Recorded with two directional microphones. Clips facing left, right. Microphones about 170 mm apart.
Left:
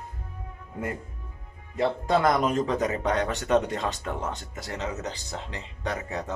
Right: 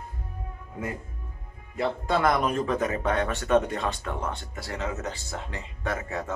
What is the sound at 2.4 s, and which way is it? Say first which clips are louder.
Speech: left 1 dB; 20° left (ahead or behind).